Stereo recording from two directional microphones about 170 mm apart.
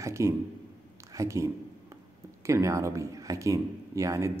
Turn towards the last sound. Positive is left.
turn(degrees=-20)  # may be behind; listen again after turning